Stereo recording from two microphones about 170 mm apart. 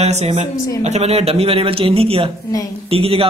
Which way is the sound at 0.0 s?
40° right (ahead or behind).